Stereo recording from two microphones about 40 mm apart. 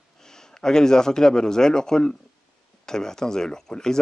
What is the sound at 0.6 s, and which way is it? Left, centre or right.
Speech, centre.